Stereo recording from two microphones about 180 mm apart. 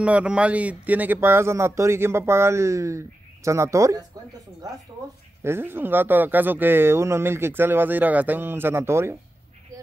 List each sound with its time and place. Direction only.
0.0 s speech: 5° right (ahead or behind)
5.4 s speech: 15° right (ahead or behind)